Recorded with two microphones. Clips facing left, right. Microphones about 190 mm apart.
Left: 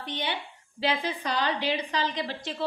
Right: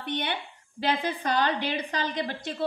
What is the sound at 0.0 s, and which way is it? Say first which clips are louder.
A woman's voice: right 2 dB; 55° right (ahead or behind).